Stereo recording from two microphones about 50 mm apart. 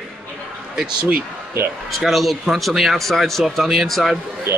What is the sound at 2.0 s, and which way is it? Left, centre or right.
Speech, centre.